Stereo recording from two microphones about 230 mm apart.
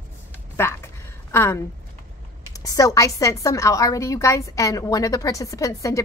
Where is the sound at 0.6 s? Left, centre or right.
Centre.